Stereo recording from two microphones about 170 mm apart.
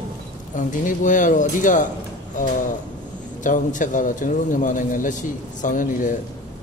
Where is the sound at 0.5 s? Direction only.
50° left (ahead or behind).